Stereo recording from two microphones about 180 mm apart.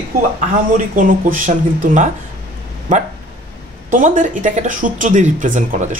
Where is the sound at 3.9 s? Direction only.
45° right (ahead or behind).